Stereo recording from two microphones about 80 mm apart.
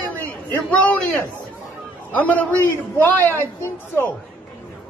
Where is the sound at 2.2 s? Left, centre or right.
Left.